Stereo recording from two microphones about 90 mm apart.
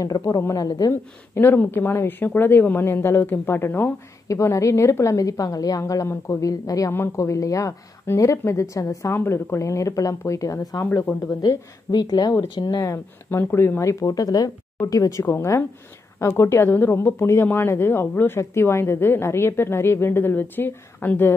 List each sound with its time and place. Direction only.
0.0 s a woman's voice: 40° left (ahead or behind)
1.3 s a woman's voice: 20° left (ahead or behind)
4.3 s a woman's voice: 35° left (ahead or behind)
11.4 s a woman's voice: 50° left (ahead or behind)
12.4 s a woman's voice: 60° left (ahead or behind); by 21.3 s 25° left (ahead or behind)